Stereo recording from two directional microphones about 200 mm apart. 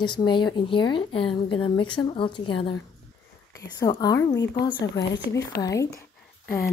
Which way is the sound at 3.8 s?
20° left (ahead or behind).